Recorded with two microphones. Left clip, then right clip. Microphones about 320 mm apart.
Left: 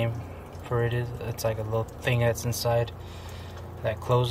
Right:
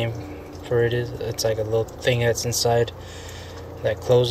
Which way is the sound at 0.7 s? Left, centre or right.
Centre.